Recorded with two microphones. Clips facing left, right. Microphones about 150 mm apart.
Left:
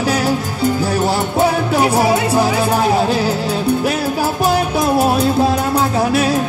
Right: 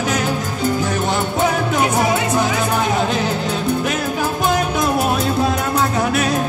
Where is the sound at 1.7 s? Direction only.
35° left (ahead or behind).